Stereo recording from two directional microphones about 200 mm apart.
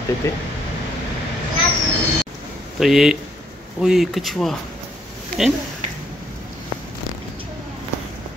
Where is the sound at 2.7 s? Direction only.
Centre (ahead or behind).